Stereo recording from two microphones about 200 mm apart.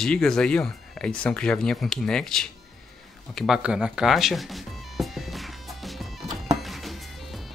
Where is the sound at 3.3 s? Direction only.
Centre (ahead or behind).